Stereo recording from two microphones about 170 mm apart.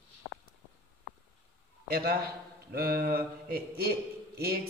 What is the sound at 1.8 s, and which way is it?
A man's voice, 65° right (ahead or behind).